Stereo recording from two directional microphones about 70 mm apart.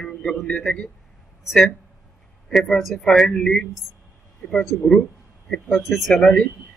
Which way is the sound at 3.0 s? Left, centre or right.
Centre.